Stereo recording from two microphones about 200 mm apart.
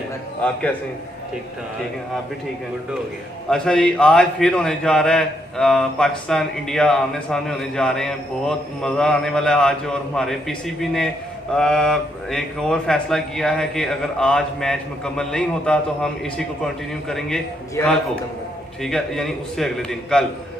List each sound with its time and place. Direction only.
0.4 s a man's voice: 5° left (ahead or behind)
3.4 s a man's voice: 5° left (ahead or behind)
18.8 s a man's voice: centre (ahead or behind)